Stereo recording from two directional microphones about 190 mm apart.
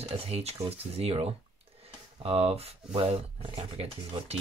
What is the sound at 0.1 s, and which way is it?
Speech, 35° right (ahead or behind).